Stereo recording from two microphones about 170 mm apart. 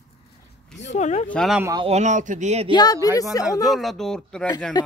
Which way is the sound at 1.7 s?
40° right (ahead or behind).